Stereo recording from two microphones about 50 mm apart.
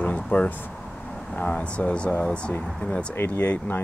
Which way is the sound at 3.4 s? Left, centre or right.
Left.